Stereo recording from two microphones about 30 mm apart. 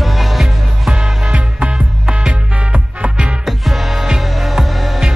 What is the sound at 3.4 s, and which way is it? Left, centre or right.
Music, centre.